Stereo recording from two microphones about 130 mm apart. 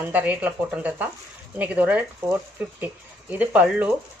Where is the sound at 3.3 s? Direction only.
10° right (ahead or behind).